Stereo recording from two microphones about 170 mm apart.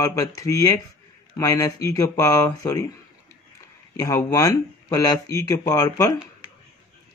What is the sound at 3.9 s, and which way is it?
Speech, 20° left (ahead or behind).